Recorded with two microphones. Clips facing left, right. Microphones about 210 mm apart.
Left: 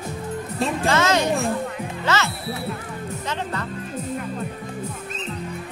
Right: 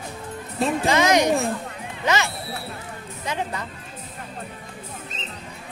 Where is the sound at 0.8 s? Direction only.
15° right (ahead or behind).